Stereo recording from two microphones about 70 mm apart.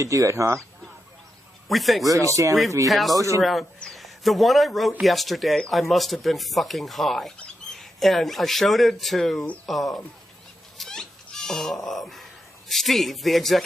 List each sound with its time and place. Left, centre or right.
0.0 s speech: right
1.7 s speech: centre
2.0 s speech: right
2.9 s speech: centre
3.2 s speech: right
3.9 s speech: centre